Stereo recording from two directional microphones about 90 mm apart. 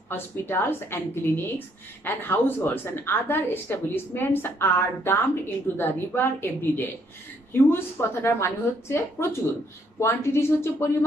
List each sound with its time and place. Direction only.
0.1 s a woman's voice: 25° left (ahead or behind)